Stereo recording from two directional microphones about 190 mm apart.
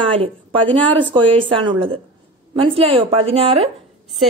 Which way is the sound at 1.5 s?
25° right (ahead or behind).